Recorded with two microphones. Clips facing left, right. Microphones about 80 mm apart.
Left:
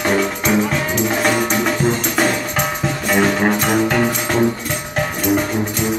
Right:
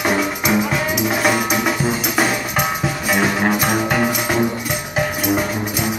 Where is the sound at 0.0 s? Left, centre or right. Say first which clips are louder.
Left 1 dB; centre.